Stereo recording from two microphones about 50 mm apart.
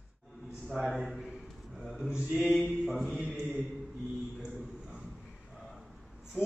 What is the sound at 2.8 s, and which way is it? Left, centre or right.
Speech, centre.